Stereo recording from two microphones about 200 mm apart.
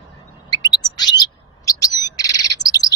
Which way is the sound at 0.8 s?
20° left (ahead or behind).